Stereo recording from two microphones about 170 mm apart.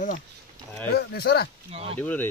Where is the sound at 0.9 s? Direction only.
75° left (ahead or behind).